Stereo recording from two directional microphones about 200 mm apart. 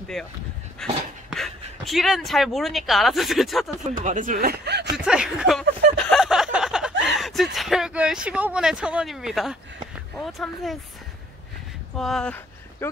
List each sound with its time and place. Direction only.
0.2 s speech: centre (ahead or behind)
3.8 s speech: 40° right (ahead or behind); by 4.9 s 55° right (ahead or behind)
4.9 s a sound: 5° right (ahead or behind)
10.1 s speech: centre (ahead or behind)
12.0 s speech: centre (ahead or behind)